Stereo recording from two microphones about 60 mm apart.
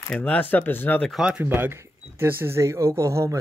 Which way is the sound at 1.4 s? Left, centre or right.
Right.